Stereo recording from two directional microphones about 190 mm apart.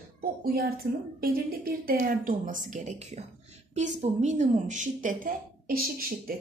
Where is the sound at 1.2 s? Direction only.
50° right (ahead or behind).